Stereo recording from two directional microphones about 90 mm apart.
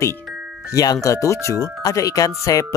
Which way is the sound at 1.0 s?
35° left (ahead or behind).